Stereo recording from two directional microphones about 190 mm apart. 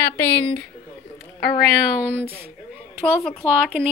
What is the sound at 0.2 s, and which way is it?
Speech, 10° left (ahead or behind).